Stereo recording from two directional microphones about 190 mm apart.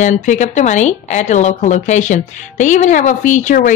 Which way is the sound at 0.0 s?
40° left (ahead or behind).